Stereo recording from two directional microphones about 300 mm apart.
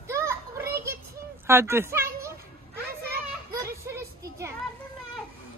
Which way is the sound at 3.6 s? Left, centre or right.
Centre.